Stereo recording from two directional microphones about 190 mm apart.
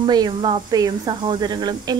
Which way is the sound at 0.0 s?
25° right (ahead or behind).